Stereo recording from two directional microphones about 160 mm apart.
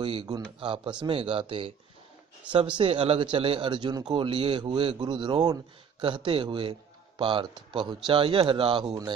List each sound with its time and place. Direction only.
0.0 s speech: 30° right (ahead or behind)